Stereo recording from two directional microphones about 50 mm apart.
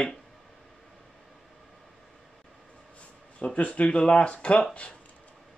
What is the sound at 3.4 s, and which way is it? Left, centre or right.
Speech, left.